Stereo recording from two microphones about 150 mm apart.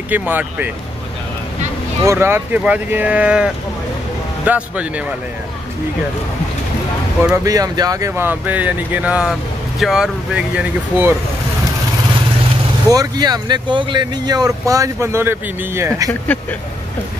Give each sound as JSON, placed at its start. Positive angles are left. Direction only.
{"t": 0.1, "sound": "speech", "side_deg": -10}
{"t": 2.0, "sound": "speech", "side_deg": -15}
{"t": 7.4, "sound": "speech", "side_deg": -25}
{"t": 8.1, "sound": "speech", "side_deg": -10}
{"t": 12.9, "sound": "speech", "side_deg": -25}
{"t": 16.1, "sound": "speech", "side_deg": 10}